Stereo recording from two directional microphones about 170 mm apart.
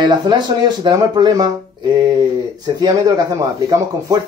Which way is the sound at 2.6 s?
25° right (ahead or behind).